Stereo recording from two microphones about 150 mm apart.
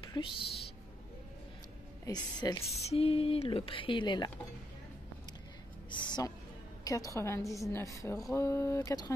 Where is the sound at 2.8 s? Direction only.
40° left (ahead or behind).